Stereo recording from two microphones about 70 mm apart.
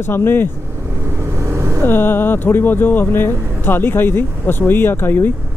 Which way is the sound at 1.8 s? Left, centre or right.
Left.